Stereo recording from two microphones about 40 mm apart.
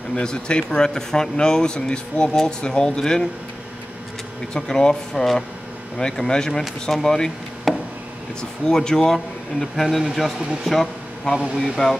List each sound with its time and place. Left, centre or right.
0.1 s speech: left
4.6 s speech: centre
7.7 s a sound: centre
8.4 s speech: centre